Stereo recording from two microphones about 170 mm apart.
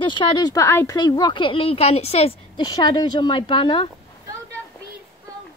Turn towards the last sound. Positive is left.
turn(degrees=30)  # may be behind; listen again after turning